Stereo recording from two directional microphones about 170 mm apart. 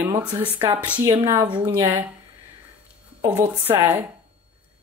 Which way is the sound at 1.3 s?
25° right (ahead or behind).